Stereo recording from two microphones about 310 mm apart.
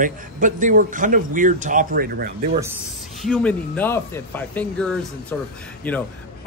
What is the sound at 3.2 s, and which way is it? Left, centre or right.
Speech, centre.